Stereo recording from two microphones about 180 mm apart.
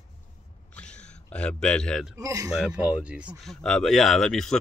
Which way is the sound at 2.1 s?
20° right (ahead or behind).